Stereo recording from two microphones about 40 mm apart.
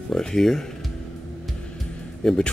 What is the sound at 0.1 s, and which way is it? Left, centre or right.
Speech, centre.